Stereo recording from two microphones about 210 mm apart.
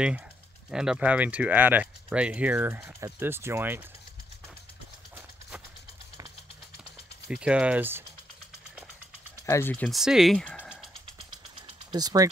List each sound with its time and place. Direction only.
0.7 s speech: 5° right (ahead or behind)
7.2 s speech: 5° right (ahead or behind)
9.5 s speech: 10° left (ahead or behind)
11.1 s a sound: 25° right (ahead or behind)